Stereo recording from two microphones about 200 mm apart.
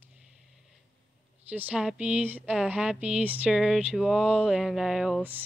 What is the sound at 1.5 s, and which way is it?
Speech, 5° right (ahead or behind).